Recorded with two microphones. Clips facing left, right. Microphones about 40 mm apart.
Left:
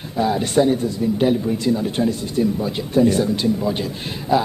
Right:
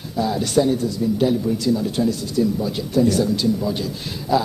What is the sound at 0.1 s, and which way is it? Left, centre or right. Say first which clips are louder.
A man's voice: left 1 dB; left.